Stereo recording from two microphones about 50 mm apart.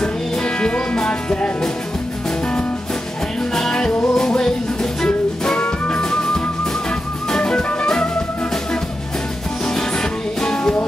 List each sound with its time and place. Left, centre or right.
0.0 s music: centre
3.5 s music: centre
10.4 s music: centre